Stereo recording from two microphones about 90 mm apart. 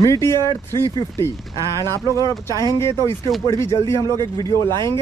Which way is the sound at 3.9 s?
50° right (ahead or behind).